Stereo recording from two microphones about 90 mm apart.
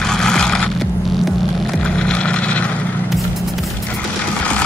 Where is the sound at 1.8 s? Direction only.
10° left (ahead or behind).